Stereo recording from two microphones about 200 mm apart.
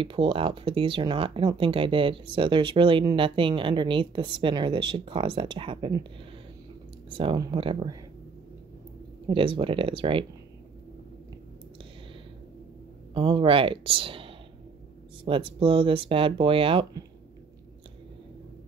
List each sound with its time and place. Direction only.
0.0 s speech: 25° right (ahead or behind)
7.1 s speech: 25° right (ahead or behind)
9.3 s speech: 25° right (ahead or behind)
13.1 s speech: 25° right (ahead or behind)